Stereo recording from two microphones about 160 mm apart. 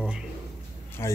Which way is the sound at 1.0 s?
15° left (ahead or behind).